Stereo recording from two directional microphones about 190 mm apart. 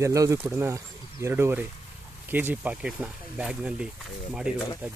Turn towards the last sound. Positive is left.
turn(degrees=-5)  # may be behind; listen again after turning